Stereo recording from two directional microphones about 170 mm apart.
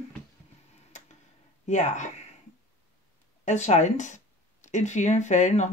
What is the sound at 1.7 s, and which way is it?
Speech, 45° left (ahead or behind).